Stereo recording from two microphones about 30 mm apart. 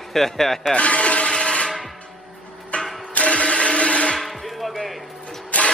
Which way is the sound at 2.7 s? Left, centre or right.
Left.